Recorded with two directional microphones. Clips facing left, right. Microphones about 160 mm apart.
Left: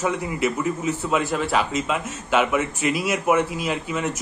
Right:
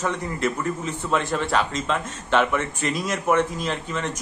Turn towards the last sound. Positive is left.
turn(degrees=10)  # may be behind; listen again after turning